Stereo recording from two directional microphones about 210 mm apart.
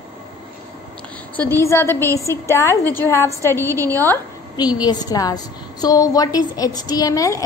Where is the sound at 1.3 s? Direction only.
10° left (ahead or behind).